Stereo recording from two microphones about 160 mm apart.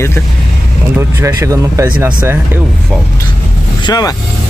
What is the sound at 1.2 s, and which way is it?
Speech, 20° right (ahead or behind).